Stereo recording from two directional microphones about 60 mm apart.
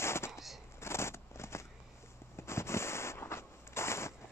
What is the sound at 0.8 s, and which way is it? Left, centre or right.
Scissors, left.